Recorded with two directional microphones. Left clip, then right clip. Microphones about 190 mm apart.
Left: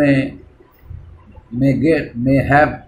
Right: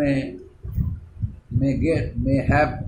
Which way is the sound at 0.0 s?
15° left (ahead or behind).